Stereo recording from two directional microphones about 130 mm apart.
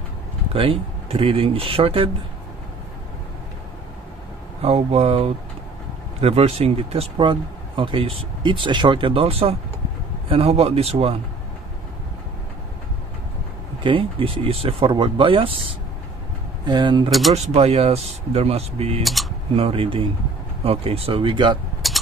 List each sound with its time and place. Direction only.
0.5 s speech: 45° right (ahead or behind)
4.6 s speech: 55° right (ahead or behind)
13.8 s speech: 40° right (ahead or behind)
17.3 s speech: 55° right (ahead or behind)